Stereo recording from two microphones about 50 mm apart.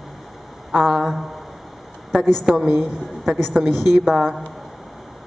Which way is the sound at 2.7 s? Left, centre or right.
Centre.